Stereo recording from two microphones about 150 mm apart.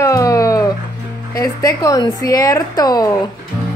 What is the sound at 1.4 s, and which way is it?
A woman's voice, 25° left (ahead or behind).